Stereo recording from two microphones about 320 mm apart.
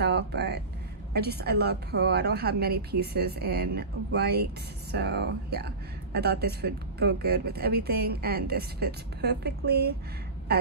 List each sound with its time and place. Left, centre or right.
0.0 s speech: right